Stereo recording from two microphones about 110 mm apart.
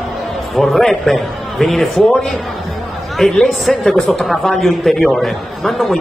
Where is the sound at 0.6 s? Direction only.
Centre (ahead or behind).